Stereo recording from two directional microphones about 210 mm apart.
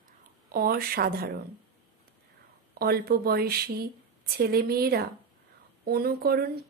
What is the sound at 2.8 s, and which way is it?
Speech, 45° right (ahead or behind).